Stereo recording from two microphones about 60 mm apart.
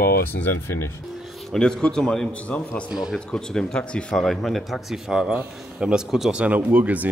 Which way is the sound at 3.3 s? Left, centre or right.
Centre.